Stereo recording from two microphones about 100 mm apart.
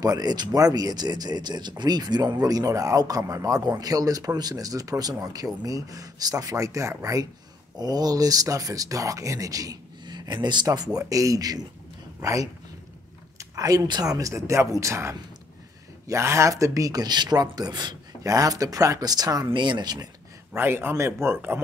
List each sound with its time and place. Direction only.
0.0 s speech: 40° right (ahead or behind)
19.5 s speech: 50° right (ahead or behind)
20.5 s speech: 20° right (ahead or behind)